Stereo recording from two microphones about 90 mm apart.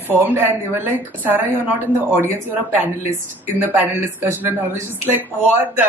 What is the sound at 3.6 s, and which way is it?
Speech, 25° right (ahead or behind).